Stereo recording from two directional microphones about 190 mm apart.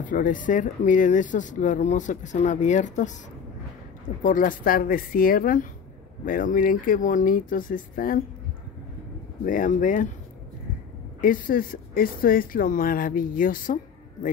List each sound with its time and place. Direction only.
0.0 s speech: 45° left (ahead or behind)
4.2 s speech: 45° left (ahead or behind)
9.5 s speech: 45° left (ahead or behind)
11.1 s speech: 45° left (ahead or behind)